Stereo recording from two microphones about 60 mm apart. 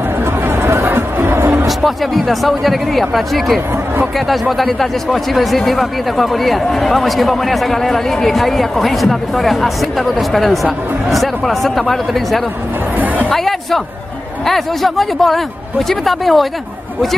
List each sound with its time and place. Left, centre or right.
0.7 s music: right
1.8 s speech: centre